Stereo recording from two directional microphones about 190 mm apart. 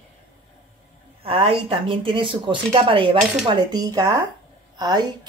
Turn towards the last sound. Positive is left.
turn(degrees=-20)  # may be behind; listen again after turning